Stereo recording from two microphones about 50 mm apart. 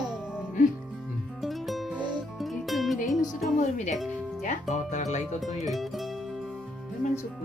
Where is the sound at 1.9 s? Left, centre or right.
Centre.